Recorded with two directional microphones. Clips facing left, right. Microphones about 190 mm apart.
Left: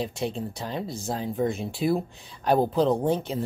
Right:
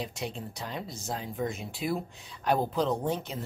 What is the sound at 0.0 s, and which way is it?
Speech, 30° left (ahead or behind).